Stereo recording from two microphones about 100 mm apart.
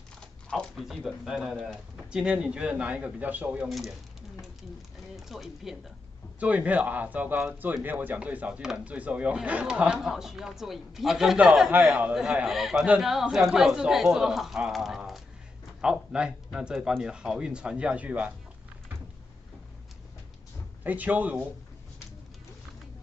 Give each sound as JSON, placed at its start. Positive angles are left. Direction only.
{"t": 0.5, "sound": "speech", "side_deg": 5}
{"t": 3.6, "sound": "speech", "side_deg": 0}
{"t": 5.1, "sound": "speech", "side_deg": 0}
{"t": 6.4, "sound": "speech", "side_deg": -15}
{"t": 20.8, "sound": "speech", "side_deg": -15}